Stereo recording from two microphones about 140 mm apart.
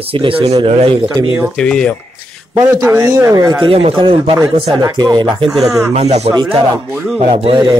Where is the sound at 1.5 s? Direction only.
5° left (ahead or behind).